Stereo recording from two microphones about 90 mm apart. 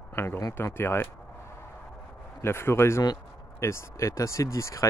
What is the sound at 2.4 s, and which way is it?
Speech, 25° left (ahead or behind).